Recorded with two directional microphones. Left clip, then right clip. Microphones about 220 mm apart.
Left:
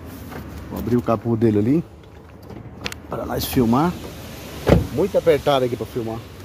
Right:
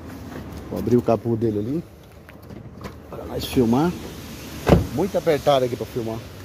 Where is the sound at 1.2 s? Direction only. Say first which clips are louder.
Left 4 dB; 25° left (ahead or behind).